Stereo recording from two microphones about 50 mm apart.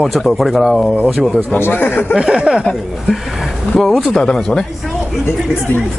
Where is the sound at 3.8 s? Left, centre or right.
Centre.